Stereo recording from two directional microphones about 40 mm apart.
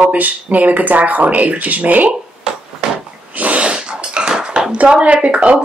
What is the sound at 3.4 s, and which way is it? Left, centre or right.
Speech, right.